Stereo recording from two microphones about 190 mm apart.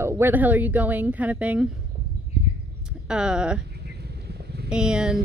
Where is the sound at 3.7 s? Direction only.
60° right (ahead or behind).